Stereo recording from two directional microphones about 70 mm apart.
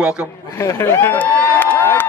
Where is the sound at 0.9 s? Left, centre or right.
Left.